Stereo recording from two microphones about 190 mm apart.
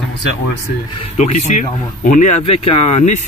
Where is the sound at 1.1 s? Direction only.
35° left (ahead or behind).